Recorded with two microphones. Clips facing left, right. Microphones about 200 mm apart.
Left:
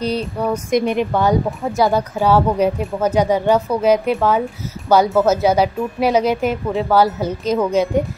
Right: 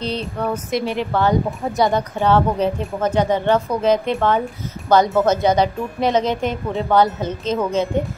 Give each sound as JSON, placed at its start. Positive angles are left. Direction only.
{"t": 0.0, "sound": "speech", "side_deg": 10}
{"t": 1.8, "sound": "speech", "side_deg": 5}